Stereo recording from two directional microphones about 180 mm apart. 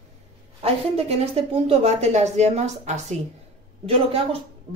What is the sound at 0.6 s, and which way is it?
Speech, 35° right (ahead or behind).